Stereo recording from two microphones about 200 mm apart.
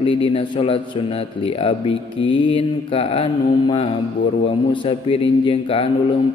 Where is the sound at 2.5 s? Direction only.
25° left (ahead or behind).